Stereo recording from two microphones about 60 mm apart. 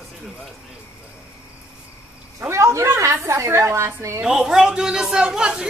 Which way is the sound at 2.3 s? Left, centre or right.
Right.